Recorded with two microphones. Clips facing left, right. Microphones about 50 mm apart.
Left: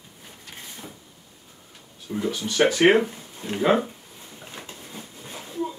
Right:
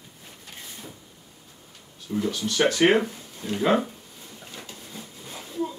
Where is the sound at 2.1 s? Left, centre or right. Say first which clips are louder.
Even; centre.